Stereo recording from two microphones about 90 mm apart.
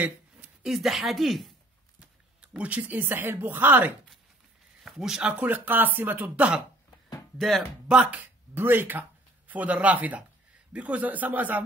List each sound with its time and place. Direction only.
0.6 s speech: 5° right (ahead or behind)
2.4 s speech: 15° right (ahead or behind)
4.8 s speech: 5° right (ahead or behind)
7.3 s speech: centre (ahead or behind)
7.9 s speech: 15° right (ahead or behind)